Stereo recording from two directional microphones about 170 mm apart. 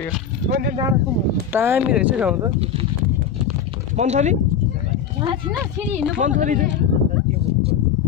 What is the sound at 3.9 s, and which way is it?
Speech, 45° right (ahead or behind).